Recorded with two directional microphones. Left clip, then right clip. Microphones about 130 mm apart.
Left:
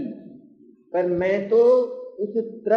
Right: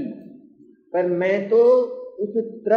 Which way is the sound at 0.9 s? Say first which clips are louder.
Right 1 dB; centre (ahead or behind).